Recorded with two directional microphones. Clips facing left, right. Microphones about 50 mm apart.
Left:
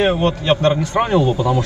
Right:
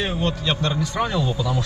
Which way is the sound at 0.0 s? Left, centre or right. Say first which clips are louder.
Left 7 dB; left.